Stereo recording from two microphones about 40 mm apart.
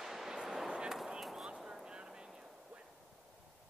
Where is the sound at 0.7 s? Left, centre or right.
Right.